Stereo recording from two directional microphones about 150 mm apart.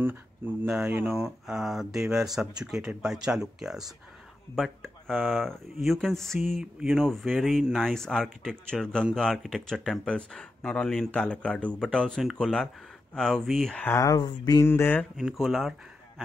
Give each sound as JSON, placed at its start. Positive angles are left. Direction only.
{"t": 0.0, "sound": "speech", "side_deg": -15}
{"t": 1.5, "sound": "speech", "side_deg": 0}
{"t": 13.9, "sound": "speech", "side_deg": 25}
{"t": 14.7, "sound": "speech", "side_deg": 15}
{"t": 15.1, "sound": "speech", "side_deg": 0}